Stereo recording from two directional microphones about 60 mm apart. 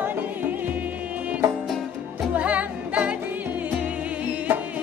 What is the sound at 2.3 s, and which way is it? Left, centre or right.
Music, right.